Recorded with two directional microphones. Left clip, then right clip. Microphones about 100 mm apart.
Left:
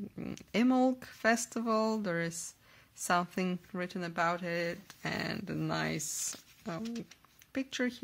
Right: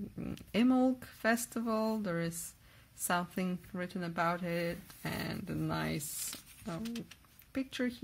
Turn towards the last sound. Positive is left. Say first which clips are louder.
# left 2 dB
turn(degrees=30)  # may be behind; listen again after turning